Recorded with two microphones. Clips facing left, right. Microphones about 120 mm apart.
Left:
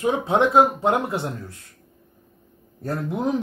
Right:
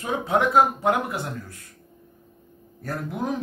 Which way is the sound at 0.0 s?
20° left (ahead or behind).